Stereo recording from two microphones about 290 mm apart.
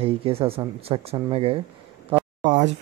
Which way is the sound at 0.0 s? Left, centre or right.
Centre.